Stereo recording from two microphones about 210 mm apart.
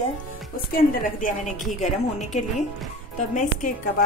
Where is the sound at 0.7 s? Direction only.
40° left (ahead or behind).